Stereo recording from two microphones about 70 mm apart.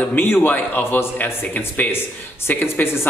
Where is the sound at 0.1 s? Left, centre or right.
Left.